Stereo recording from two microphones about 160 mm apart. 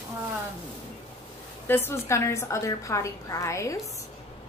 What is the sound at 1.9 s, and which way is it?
A woman's voice, 15° left (ahead or behind).